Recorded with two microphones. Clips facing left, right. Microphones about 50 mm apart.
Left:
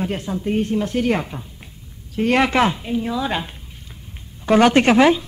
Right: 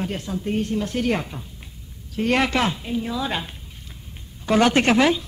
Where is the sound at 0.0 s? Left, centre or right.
Centre.